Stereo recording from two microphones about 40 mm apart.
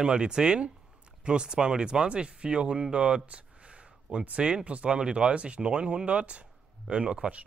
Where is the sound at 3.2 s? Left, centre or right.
Right.